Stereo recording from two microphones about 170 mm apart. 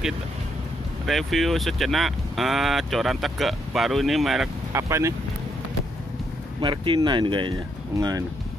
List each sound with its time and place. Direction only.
1.0 s speech: centre (ahead or behind)
4.7 s speech: 15° right (ahead or behind)
6.6 s speech: 30° right (ahead or behind)